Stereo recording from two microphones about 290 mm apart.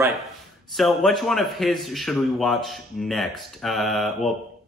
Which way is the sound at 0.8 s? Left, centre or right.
Centre.